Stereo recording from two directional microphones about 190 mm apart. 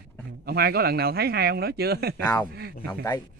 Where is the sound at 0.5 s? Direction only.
55° right (ahead or behind).